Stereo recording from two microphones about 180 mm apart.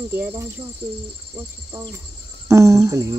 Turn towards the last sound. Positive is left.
turn(degrees=-15)  # may be behind; listen again after turning